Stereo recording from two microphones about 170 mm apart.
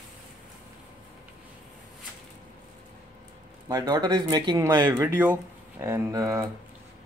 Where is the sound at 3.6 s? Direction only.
20° right (ahead or behind).